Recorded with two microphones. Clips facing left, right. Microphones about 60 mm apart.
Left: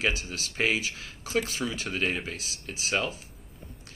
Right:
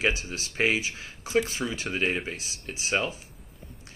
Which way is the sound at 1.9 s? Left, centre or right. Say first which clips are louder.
Right 3 dB; centre.